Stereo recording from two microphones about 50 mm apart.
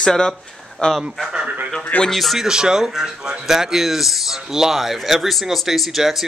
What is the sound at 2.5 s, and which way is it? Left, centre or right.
Speech, centre.